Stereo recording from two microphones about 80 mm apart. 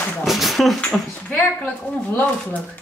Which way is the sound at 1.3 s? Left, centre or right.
Centre.